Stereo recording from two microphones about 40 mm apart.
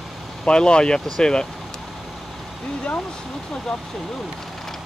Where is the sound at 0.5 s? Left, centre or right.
Left.